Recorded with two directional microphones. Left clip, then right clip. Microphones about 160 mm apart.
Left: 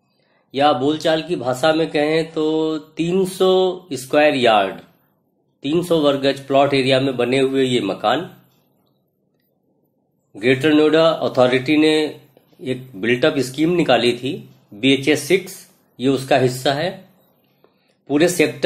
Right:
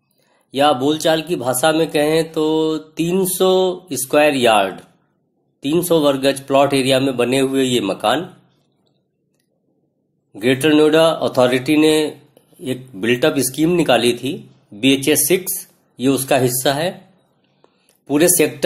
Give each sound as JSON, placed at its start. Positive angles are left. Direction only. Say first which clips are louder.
{"t": 0.5, "sound": "speech", "louder": "right 1 dB", "side_deg": -25}
{"t": 10.3, "sound": "speech", "louder": "right 1 dB", "side_deg": -25}
{"t": 17.6, "sound": "a sound", "louder": "right 3 dB", "side_deg": -25}